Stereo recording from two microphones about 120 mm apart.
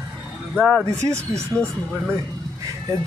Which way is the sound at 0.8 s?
25° right (ahead or behind).